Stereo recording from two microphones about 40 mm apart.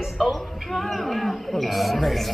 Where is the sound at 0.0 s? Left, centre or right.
Centre.